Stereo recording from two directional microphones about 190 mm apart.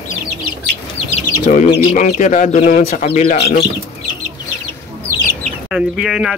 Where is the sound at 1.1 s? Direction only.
35° left (ahead or behind).